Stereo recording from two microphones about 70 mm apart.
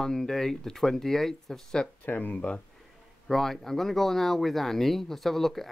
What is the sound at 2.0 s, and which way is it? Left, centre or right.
Speech, left.